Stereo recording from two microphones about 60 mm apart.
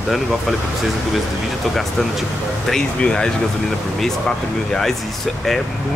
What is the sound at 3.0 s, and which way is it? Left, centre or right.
Speech, centre.